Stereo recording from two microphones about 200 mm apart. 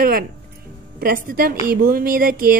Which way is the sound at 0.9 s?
45° right (ahead or behind).